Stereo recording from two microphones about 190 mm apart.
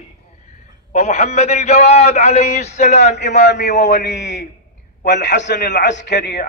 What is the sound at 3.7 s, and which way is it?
Speech, 40° left (ahead or behind).